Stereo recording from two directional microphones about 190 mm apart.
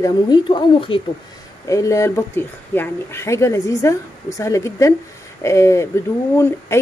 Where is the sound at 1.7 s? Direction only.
15° left (ahead or behind).